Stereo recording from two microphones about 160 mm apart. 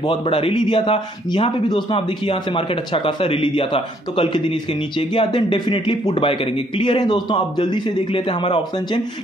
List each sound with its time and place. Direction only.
0.0 s a man's voice: 35° left (ahead or behind)